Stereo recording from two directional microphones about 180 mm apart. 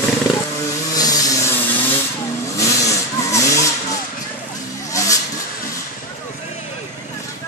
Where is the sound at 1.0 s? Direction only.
20° left (ahead or behind).